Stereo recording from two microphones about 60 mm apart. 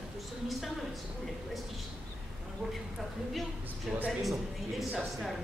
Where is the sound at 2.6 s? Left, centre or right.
Centre.